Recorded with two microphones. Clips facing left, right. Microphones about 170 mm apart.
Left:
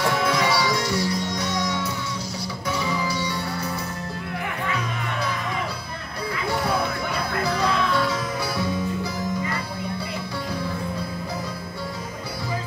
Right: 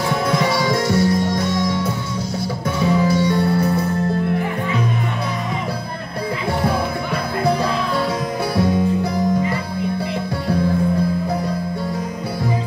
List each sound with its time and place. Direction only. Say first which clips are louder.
0.3 s music: right 4 dB; 50° right (ahead or behind)
8.5 s music: right 11 dB; 55° right (ahead or behind)